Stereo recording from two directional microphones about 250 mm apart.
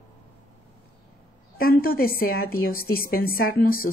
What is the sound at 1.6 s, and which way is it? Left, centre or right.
A woman's voice, left.